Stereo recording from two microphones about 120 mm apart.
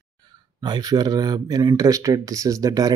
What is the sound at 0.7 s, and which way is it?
Speech, 35° right (ahead or behind).